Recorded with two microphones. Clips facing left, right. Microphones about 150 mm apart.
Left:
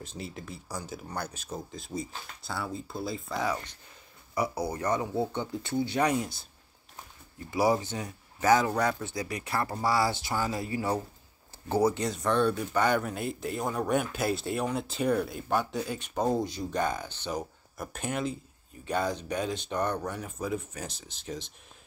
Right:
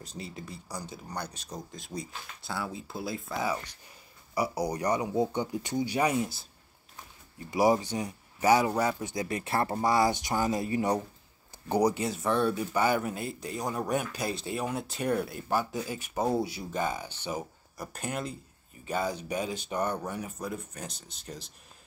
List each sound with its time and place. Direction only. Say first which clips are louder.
0.0 s speech: left 1 dB; centre (ahead or behind)
4.4 s speech: right 1 dB; 15° right (ahead or behind)
7.5 s speech: right 1 dB; 15° right (ahead or behind)
9.1 s speech: right 2 dB; 25° right (ahead or behind); by 20.3 s 10° right (ahead or behind)
20.3 s speech: left 4 dB; 5° left (ahead or behind)